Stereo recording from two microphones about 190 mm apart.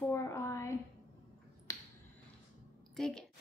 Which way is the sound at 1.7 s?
15° left (ahead or behind).